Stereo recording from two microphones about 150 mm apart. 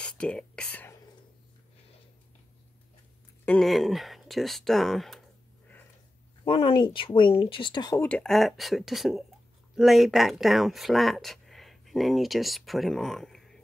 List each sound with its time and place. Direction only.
0.0 s whispering: 5° left (ahead or behind)
3.4 s speech: centre (ahead or behind)
6.4 s speech: 35° left (ahead or behind)
8.0 s speech: 5° left (ahead or behind)